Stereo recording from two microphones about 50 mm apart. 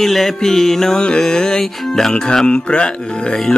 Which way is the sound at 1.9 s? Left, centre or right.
Centre.